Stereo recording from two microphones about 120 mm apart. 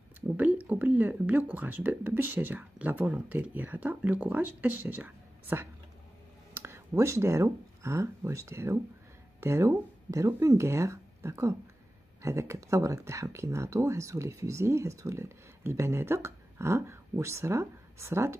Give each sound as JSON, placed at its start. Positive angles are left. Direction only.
{"t": 0.4, "sound": "speech", "side_deg": -15}